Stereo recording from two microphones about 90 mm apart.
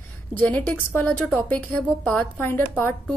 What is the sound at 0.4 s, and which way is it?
A woman's voice, 20° left (ahead or behind).